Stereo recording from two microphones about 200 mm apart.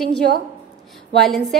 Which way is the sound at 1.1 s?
Centre (ahead or behind).